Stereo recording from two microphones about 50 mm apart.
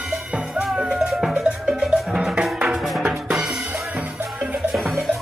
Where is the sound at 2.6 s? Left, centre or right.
Centre.